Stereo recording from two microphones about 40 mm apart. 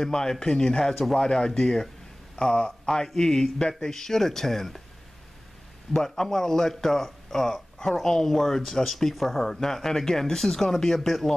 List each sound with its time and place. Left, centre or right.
0.0 s a man's voice: centre
3.2 s speech: centre
5.9 s speech: centre